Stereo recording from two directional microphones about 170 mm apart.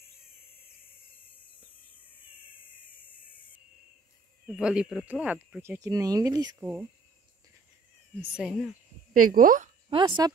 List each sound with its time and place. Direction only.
4.5 s speech: 5° right (ahead or behind); by 6.7 s 20° right (ahead or behind)
8.2 s speech: 5° right (ahead or behind)
9.1 s speech: 55° right (ahead or behind)
9.8 s a woman's voice: 30° right (ahead or behind)